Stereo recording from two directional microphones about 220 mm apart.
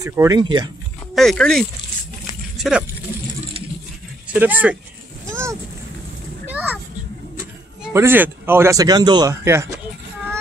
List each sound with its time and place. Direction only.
0.0 s speech: 15° right (ahead or behind)
1.1 s speech: 5° left (ahead or behind)
2.5 s a sound: centre (ahead or behind)
4.3 s speech: 10° right (ahead or behind)
5.3 s vehicle: 15° right (ahead or behind)
6.4 s a sound: 10° right (ahead or behind)
7.8 s speech: 10° right (ahead or behind)